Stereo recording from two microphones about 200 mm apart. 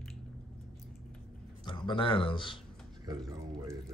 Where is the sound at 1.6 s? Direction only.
25° left (ahead or behind).